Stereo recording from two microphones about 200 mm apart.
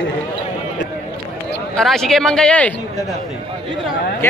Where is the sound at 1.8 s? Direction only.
Centre (ahead or behind).